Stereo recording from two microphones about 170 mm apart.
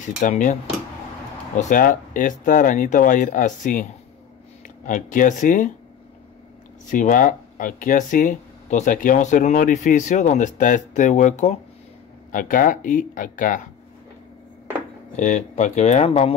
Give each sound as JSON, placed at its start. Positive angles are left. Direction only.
{"t": 0.2, "sound": "speech", "side_deg": 50}
{"t": 1.6, "sound": "speech", "side_deg": 50}
{"t": 6.9, "sound": "speech", "side_deg": 50}
{"t": 15.1, "sound": "speech", "side_deg": 45}